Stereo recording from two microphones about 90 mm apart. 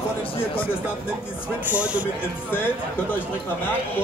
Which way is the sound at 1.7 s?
15° right (ahead or behind).